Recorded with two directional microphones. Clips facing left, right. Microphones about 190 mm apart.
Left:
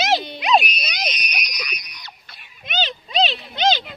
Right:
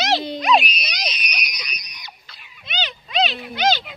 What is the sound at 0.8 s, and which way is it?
Speech, 55° left (ahead or behind).